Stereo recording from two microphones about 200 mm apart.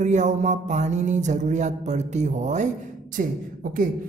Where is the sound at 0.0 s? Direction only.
35° right (ahead or behind).